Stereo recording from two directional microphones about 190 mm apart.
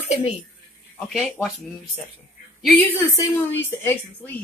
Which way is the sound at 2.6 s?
10° left (ahead or behind).